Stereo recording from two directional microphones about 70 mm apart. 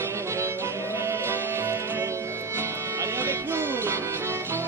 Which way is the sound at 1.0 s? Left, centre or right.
Right.